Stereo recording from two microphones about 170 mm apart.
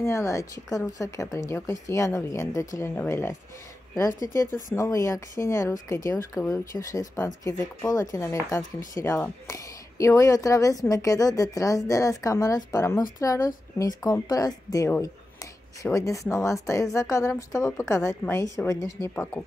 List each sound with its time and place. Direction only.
0.0 s a woman's voice: 15° left (ahead or behind)